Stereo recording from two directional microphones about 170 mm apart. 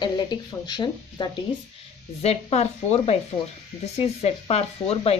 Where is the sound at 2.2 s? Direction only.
40° left (ahead or behind).